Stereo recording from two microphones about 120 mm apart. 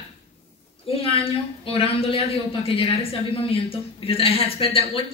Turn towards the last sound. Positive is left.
turn(degrees=50)  # may be behind; listen again after turning